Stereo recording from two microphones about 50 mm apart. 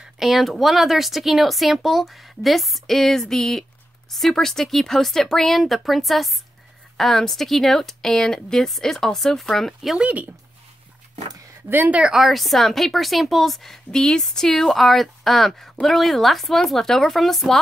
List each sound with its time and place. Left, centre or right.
0.0 s speech: centre
12.1 s speech: centre